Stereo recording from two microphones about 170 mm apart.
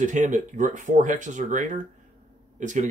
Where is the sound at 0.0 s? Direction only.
45° right (ahead or behind).